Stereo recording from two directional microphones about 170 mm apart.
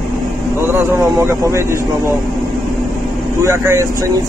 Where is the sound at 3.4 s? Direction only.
15° right (ahead or behind).